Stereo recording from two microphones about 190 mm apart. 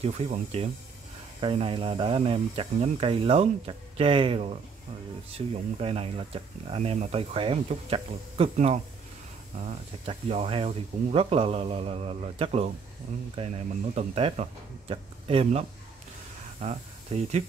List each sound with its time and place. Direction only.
0.0 s speech: 35° right (ahead or behind)
5.8 s speech: 30° right (ahead or behind)
10.0 s speech: 35° right (ahead or behind)
16.6 s speech: 35° right (ahead or behind)